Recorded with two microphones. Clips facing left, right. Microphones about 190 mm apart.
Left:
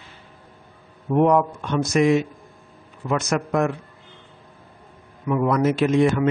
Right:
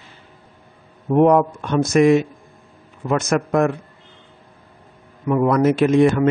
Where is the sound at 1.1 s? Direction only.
45° right (ahead or behind).